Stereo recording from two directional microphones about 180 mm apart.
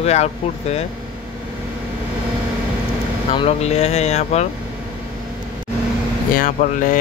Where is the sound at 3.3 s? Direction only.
35° left (ahead or behind).